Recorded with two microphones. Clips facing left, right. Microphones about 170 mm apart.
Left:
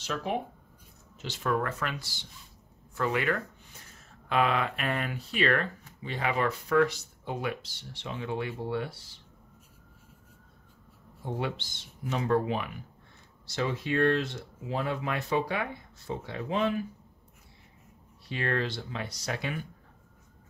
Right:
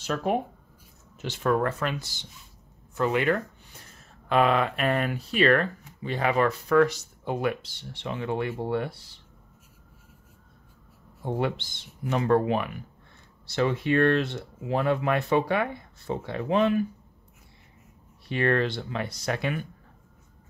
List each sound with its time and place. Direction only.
0.0 s speech: 50° right (ahead or behind)
1.8 s speech: 20° right (ahead or behind)
4.3 s speech: 45° right (ahead or behind)
11.2 s speech: 55° right (ahead or behind)
18.3 s speech: 60° right (ahead or behind)